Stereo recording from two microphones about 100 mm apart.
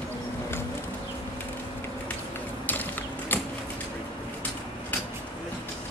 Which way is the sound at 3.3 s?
20° left (ahead or behind).